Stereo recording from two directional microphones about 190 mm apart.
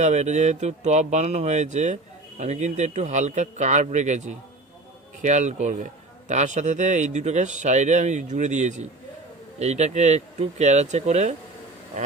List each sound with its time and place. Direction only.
0.0 s speech: 35° right (ahead or behind)